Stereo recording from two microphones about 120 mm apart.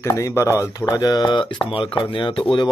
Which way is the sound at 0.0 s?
25° left (ahead or behind).